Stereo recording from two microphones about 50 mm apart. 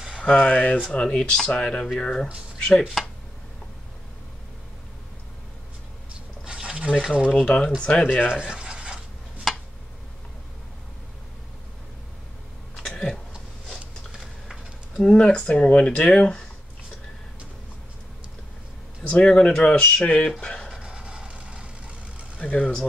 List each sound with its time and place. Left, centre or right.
0.2 s speech: left
2.8 s speech: centre
6.4 s a sound: centre
7.3 s speech: centre
8.3 s scratch: right
9.5 s a sound: centre
12.7 s throat clearing: centre
13.7 s a sound: centre
15.0 s speech: centre
19.0 s speech: centre
20.7 s vehicle: right
22.4 s speech: left